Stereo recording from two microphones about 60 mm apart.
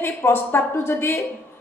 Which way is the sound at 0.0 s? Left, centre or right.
Left.